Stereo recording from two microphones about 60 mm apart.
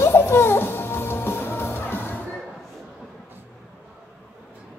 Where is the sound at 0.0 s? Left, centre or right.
Left.